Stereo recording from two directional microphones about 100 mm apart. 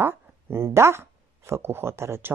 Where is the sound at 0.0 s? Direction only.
25° right (ahead or behind).